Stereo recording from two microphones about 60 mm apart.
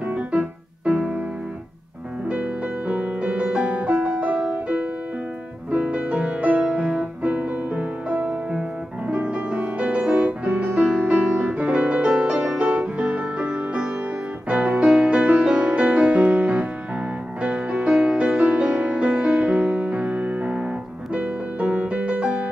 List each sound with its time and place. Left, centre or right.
0.0 s piano: right
2.2 s music: right
8.3 s music: centre
9.0 s music: right